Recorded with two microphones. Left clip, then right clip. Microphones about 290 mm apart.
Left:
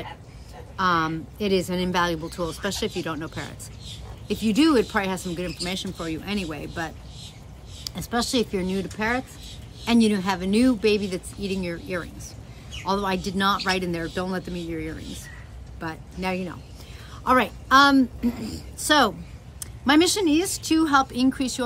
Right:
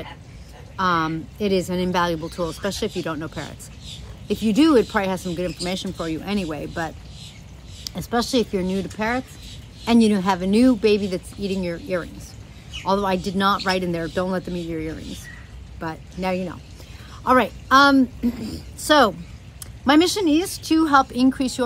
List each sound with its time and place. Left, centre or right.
0.7 s speech: centre
7.9 s speech: centre